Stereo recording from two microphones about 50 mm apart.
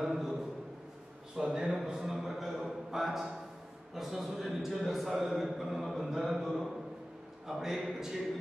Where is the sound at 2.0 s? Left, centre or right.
Centre.